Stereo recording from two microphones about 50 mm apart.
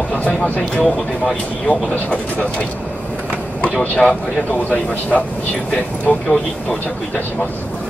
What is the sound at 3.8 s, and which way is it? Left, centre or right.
Speech, centre.